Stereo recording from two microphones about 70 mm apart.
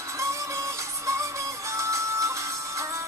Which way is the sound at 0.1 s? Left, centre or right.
Right.